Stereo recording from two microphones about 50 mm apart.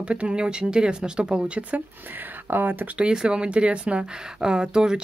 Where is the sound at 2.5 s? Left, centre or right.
Right.